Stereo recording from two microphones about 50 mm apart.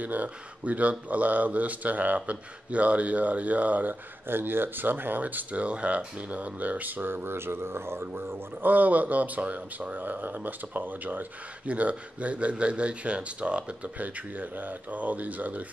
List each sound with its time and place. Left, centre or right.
0.0 s speech: right
4.3 s speech: right
8.1 s speech: right